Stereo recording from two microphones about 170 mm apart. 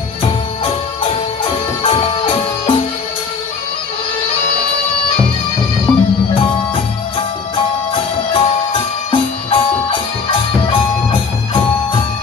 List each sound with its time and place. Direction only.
1.8 s music: 30° left (ahead or behind)
5.9 s music: 5° left (ahead or behind)
7.9 s music: 30° left (ahead or behind)